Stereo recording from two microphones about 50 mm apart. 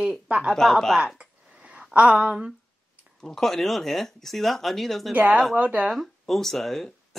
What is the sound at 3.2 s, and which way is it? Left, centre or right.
Speech, centre.